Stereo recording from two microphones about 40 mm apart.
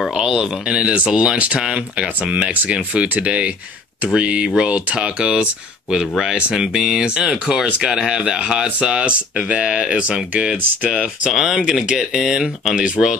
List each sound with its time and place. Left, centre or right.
0.1 s speech: centre
0.4 s speech: right; by 12.7 s centre
12.7 s speech: right